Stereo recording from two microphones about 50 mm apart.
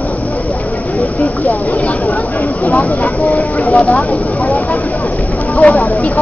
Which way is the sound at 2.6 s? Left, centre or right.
Left.